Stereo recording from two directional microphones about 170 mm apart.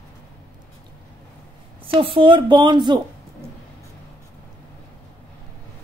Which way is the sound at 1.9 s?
30° right (ahead or behind).